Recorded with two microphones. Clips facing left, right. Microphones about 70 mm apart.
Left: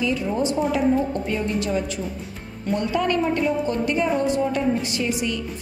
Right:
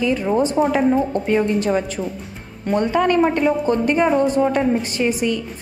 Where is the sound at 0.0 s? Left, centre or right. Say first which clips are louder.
Right 5 dB; right.